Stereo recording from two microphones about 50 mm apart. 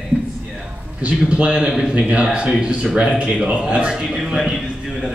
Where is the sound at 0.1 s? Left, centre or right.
Right.